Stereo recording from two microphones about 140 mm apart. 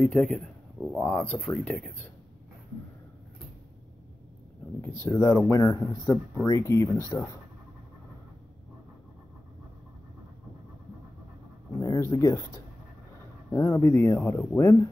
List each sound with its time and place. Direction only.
0.0 s speech: 5° left (ahead or behind)
1.1 s speech: 10° left (ahead or behind)
5.0 s speech: 20° left (ahead or behind)
11.7 s speech: 25° left (ahead or behind)
13.5 s speech: 15° left (ahead or behind)